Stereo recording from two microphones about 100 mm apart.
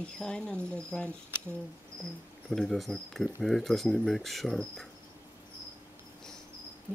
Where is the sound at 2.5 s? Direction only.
5° left (ahead or behind).